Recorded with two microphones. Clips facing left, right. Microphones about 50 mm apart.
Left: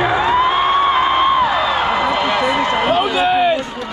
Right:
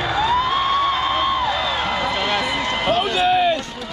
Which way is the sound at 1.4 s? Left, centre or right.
Centre.